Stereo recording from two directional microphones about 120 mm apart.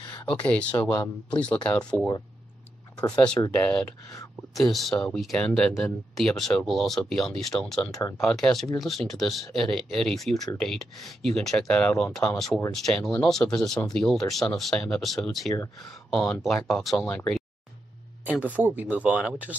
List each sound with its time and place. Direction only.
0.3 s speech: 10° left (ahead or behind)
3.4 s speech: 30° left (ahead or behind)
4.6 s speech: centre (ahead or behind)
18.2 s speech: 15° right (ahead or behind)